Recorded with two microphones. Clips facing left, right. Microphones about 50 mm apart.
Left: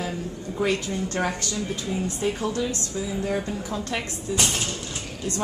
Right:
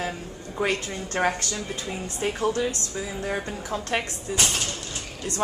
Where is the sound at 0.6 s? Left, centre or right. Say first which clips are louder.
Left 1 dB; right.